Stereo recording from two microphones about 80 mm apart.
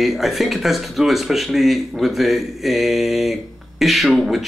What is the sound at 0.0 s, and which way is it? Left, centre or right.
Speech, centre.